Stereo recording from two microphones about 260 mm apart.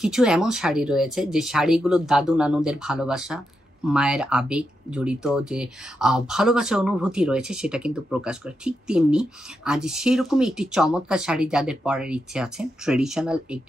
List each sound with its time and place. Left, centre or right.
0.0 s speech: centre